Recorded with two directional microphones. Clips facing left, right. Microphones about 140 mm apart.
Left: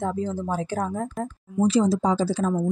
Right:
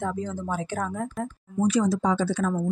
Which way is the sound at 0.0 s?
35° left (ahead or behind).